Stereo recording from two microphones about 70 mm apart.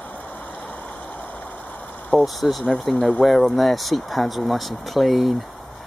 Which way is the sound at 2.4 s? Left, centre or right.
Centre.